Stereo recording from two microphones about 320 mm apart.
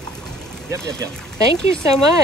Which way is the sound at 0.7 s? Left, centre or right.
Centre.